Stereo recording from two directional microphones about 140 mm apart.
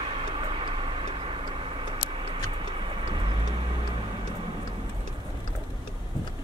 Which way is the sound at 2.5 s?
35° right (ahead or behind).